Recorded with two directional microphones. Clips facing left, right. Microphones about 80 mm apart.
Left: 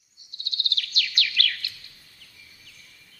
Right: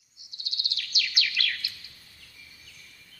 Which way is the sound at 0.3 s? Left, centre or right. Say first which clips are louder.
Left 5 dB; centre.